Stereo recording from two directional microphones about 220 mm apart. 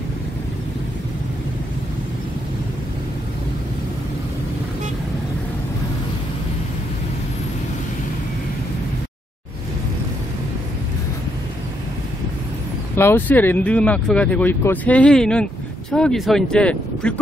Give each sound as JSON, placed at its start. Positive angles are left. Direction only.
{"t": 12.9, "sound": "speech", "side_deg": 10}